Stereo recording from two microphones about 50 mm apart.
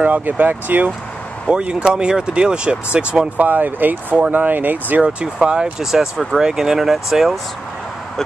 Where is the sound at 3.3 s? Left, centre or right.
Right.